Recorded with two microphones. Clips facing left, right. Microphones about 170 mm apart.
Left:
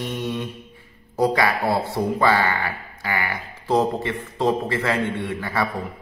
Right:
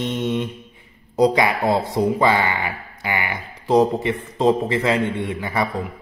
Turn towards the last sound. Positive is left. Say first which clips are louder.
# right 2 dB
turn(degrees=-15)  # may be behind; listen again after turning